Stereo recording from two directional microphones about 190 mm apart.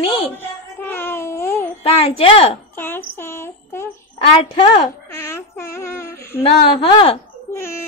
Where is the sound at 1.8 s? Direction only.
30° left (ahead or behind).